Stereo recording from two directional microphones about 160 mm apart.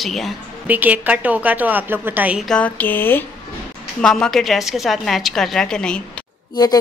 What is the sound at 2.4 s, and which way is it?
Speech, 5° left (ahead or behind).